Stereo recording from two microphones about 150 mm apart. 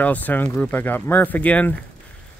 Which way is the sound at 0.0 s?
10° left (ahead or behind).